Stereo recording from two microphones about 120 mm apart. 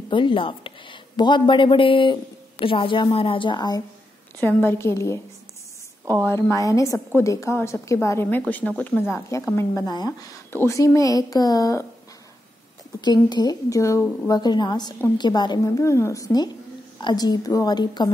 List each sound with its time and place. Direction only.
0.1 s a woman's voice: 45° left (ahead or behind)
4.4 s speech: 15° left (ahead or behind)
6.5 s speech: 25° left (ahead or behind)
13.0 s a woman's voice: 35° left (ahead or behind)